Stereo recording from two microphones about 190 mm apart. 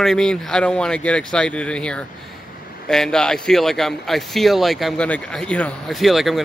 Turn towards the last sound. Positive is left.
turn(degrees=0)  # may be behind; listen again after turning